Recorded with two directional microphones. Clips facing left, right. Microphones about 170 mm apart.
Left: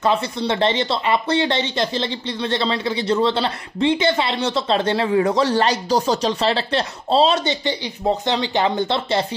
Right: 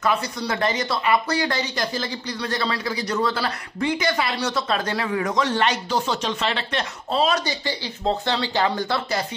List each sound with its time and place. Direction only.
0.0 s speech: 25° left (ahead or behind)